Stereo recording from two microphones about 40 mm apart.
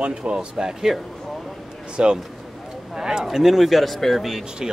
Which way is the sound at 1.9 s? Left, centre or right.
Right.